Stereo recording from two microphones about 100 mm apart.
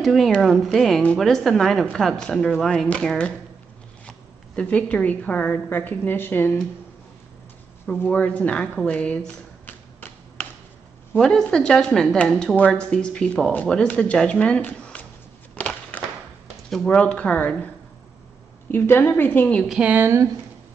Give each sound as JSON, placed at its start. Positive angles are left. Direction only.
{"t": 0.0, "sound": "a woman's voice", "side_deg": 0}
{"t": 4.6, "sound": "a woman's voice", "side_deg": 15}
{"t": 8.0, "sound": "a woman's voice", "side_deg": 15}
{"t": 15.5, "sound": "a sound", "side_deg": 15}
{"t": 16.7, "sound": "a woman's voice", "side_deg": 10}
{"t": 18.7, "sound": "a woman's voice", "side_deg": 25}
{"t": 19.7, "sound": "speech", "side_deg": -15}